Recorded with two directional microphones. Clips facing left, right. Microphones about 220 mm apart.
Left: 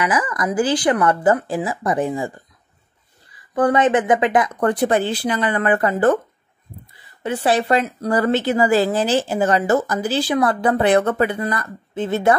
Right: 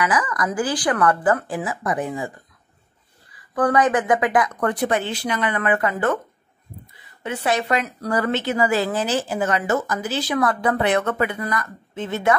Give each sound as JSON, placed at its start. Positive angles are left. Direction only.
{"t": 0.0, "sound": "speech", "side_deg": 25}
{"t": 3.5, "sound": "speech", "side_deg": 25}
{"t": 7.2, "sound": "speech", "side_deg": 30}